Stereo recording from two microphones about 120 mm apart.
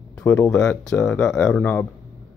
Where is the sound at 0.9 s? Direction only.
10° left (ahead or behind).